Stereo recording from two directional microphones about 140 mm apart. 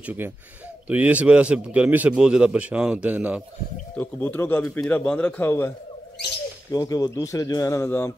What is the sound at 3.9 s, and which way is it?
Speech, 15° left (ahead or behind).